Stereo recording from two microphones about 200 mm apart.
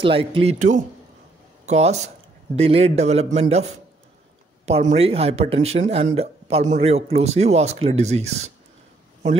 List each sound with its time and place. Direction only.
0.0 s speech: 30° right (ahead or behind)
4.6 s speech: 30° right (ahead or behind)